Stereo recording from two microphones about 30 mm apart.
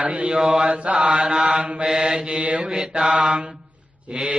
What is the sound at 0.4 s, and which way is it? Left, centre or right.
Mantra, centre.